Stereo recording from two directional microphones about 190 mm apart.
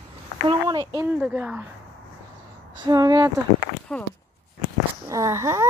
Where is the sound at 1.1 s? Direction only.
5° right (ahead or behind).